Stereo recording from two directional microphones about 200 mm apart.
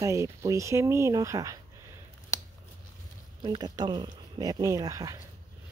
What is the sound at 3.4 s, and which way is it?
Speech, 20° right (ahead or behind).